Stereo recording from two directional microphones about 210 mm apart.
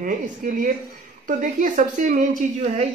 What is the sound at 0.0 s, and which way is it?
A woman's voice, 40° right (ahead or behind).